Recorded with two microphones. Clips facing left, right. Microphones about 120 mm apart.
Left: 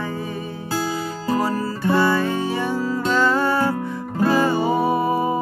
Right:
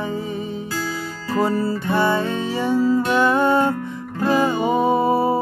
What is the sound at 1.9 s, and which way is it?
Music, 20° right (ahead or behind).